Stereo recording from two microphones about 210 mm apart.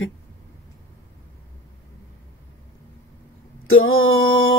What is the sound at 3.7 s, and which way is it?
Mantra, 70° left (ahead or behind).